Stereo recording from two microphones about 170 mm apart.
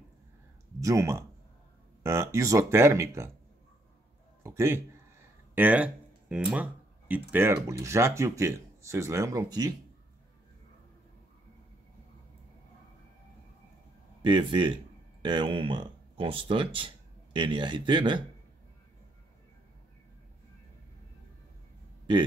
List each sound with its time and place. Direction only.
0.7 s speech: 20° right (ahead or behind)
4.4 s a man's voice: 15° right (ahead or behind)
14.2 s speech: 30° right (ahead or behind)